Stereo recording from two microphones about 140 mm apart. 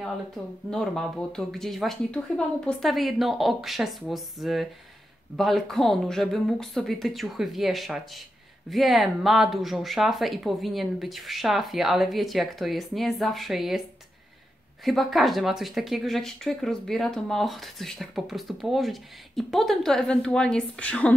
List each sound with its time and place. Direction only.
0.7 s speech: 5° left (ahead or behind)
14.9 s speech: centre (ahead or behind)